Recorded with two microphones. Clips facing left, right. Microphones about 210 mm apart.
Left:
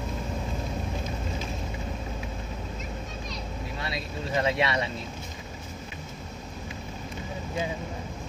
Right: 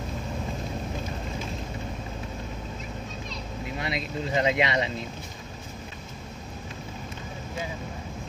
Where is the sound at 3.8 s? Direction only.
20° right (ahead or behind).